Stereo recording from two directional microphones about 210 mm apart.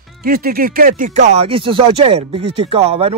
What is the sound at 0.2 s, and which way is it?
Speech, 45° right (ahead or behind).